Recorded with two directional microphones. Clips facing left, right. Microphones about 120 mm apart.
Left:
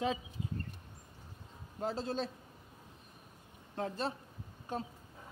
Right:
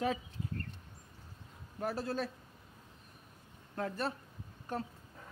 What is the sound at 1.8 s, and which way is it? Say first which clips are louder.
Speech: even; 20° left (ahead or behind).